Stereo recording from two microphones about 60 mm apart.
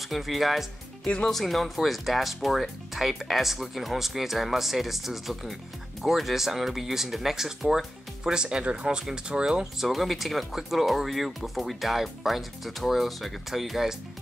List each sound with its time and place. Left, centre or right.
0.0 s speech: centre
1.0 s speech: centre
1.3 s speech: centre